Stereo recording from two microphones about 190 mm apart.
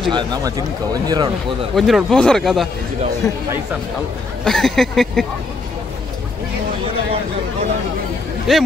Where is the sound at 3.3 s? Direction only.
15° left (ahead or behind).